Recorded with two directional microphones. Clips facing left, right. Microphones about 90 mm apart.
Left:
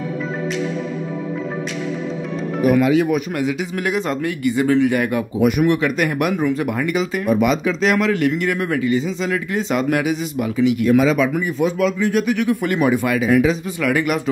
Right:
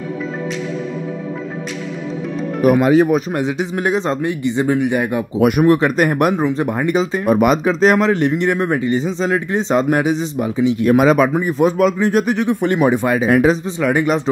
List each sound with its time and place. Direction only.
2.7 s speech: 40° right (ahead or behind); by 5.2 s 20° right (ahead or behind)
5.6 s speech: 35° right (ahead or behind)
6.4 s speech: 30° right (ahead or behind)
7.2 s speech: 45° right (ahead or behind); by 10.9 s 30° right (ahead or behind)
10.9 s speech: 55° right (ahead or behind)
13.7 s speech: 25° right (ahead or behind)